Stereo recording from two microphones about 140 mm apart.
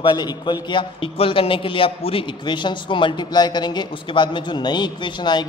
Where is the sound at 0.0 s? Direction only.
30° left (ahead or behind).